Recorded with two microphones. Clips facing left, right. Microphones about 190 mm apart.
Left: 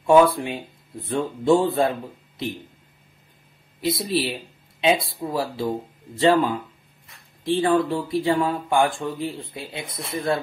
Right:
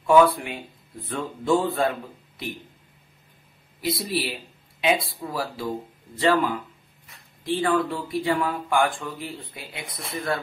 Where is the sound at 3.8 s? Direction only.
25° left (ahead or behind).